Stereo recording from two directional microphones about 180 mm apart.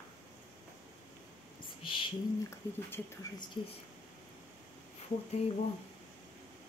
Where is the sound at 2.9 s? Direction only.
20° left (ahead or behind).